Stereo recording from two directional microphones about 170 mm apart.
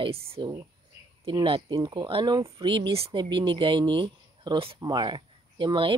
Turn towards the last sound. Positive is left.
turn(degrees=-30)  # may be behind; listen again after turning